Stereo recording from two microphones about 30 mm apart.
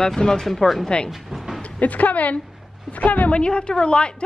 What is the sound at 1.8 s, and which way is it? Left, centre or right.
A woman's voice, left.